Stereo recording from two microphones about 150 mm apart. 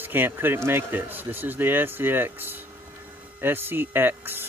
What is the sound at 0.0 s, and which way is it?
Speech, 15° right (ahead or behind).